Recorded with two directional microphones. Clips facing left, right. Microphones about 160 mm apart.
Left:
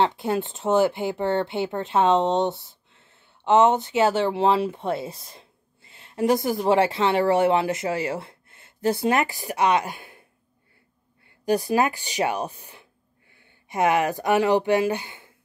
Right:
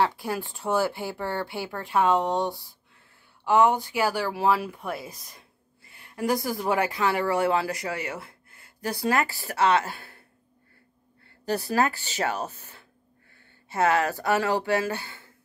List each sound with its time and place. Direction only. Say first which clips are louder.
0.0 s speech: left 4 dB; 25° left (ahead or behind)
11.2 s speech: left 6 dB; 15° left (ahead or behind)